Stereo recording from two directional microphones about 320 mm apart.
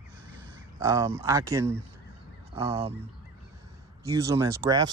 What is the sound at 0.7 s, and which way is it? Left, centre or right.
Speech, centre.